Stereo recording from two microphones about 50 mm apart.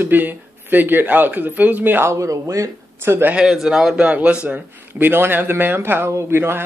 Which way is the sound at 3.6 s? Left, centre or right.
Centre.